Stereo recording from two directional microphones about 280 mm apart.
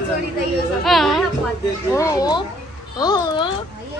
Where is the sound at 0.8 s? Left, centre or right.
Centre.